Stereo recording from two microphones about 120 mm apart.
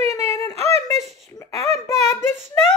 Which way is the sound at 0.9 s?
30° left (ahead or behind).